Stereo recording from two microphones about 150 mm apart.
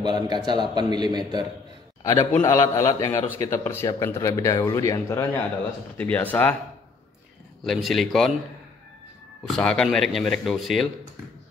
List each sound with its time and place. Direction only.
0.0 s a man's voice: 30° right (ahead or behind)
2.3 s a man's voice: 15° left (ahead or behind)
7.6 s speech: centre (ahead or behind)
9.5 s speech: 5° left (ahead or behind)